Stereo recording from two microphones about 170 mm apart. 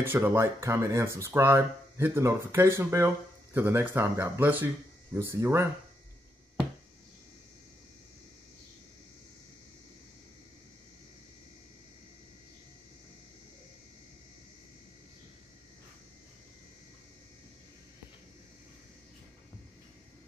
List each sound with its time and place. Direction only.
0.0 s speech: 15° right (ahead or behind)